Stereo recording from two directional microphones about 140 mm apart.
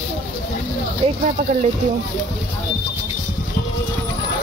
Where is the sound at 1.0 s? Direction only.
40° right (ahead or behind).